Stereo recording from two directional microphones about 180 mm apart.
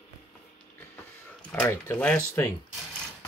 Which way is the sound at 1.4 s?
10° left (ahead or behind).